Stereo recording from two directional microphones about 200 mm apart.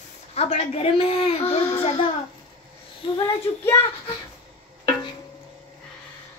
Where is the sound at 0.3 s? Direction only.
30° left (ahead or behind).